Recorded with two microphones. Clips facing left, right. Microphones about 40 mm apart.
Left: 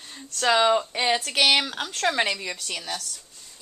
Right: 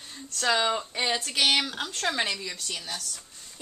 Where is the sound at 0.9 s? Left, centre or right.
Left.